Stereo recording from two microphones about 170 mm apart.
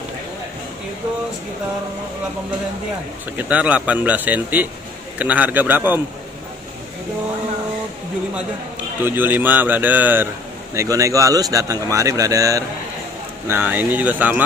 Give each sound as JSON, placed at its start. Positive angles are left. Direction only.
{"t": 3.3, "sound": "speech", "side_deg": -10}
{"t": 9.0, "sound": "a man's voice", "side_deg": -10}